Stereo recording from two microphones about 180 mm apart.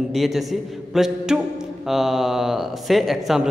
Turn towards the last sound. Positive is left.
turn(degrees=0)  # may be behind; listen again after turning